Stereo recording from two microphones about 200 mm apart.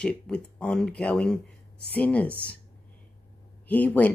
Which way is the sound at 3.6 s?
10° left (ahead or behind).